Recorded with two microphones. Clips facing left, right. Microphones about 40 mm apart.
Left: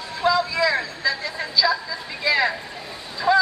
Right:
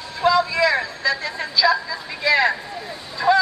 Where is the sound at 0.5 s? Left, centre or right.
Right.